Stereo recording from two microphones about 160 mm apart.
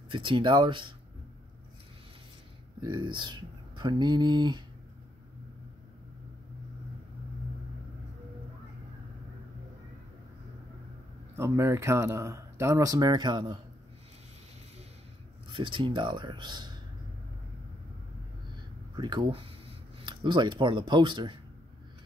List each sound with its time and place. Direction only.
0.1 s speech: 30° right (ahead or behind)
2.8 s speech: 30° right (ahead or behind)
11.3 s speech: 15° right (ahead or behind)
15.4 s speech: 30° right (ahead or behind)
18.9 s speech: 25° right (ahead or behind)